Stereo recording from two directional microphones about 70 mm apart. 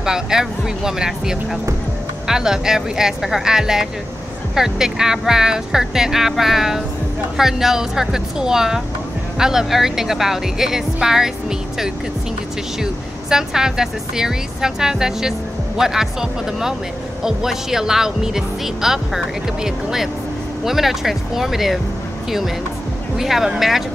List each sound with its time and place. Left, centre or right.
0.0 s speech: centre
12.8 s speech: centre
23.1 s speech: centre